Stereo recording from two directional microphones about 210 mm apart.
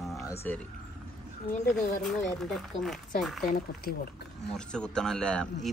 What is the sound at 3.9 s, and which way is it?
Speech, 50° left (ahead or behind).